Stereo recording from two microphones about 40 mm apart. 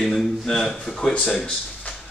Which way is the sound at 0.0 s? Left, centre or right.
Centre.